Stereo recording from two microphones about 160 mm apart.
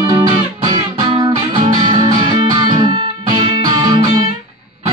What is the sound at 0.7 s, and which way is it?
Music, 25° right (ahead or behind).